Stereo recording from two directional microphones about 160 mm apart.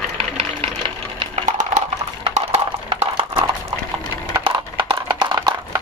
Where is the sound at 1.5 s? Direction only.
50° right (ahead or behind).